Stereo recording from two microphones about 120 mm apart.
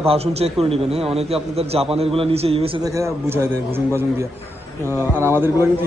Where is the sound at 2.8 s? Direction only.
25° right (ahead or behind).